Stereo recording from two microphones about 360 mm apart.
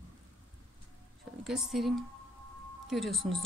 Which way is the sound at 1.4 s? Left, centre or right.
Centre.